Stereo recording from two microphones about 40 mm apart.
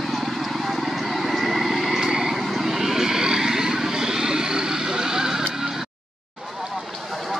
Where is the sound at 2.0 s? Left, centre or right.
Centre.